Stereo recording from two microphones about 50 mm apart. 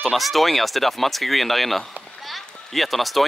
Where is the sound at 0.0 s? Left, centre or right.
Centre.